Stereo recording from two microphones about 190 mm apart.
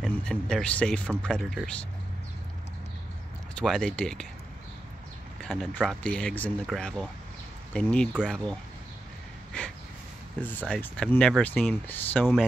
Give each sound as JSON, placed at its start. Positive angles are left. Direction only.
{"t": 0.0, "sound": "speech", "side_deg": 5}
{"t": 3.5, "sound": "speech", "side_deg": 5}
{"t": 5.4, "sound": "speech", "side_deg": 0}
{"t": 10.7, "sound": "speech", "side_deg": 5}